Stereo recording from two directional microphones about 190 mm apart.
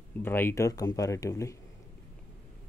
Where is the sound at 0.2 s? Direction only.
10° left (ahead or behind).